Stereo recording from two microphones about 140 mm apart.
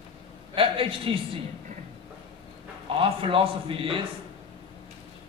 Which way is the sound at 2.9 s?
40° right (ahead or behind).